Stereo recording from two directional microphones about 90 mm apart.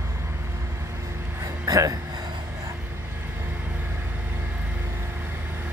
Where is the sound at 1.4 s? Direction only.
40° right (ahead or behind).